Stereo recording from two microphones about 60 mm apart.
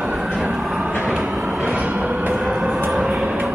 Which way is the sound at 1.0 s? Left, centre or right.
Centre.